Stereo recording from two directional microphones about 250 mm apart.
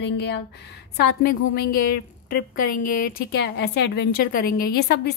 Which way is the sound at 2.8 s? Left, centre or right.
Left.